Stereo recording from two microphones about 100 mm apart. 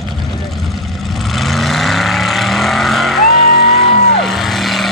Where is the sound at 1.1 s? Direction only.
Centre (ahead or behind).